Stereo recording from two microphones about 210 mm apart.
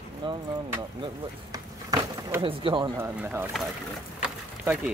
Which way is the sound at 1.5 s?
15° right (ahead or behind).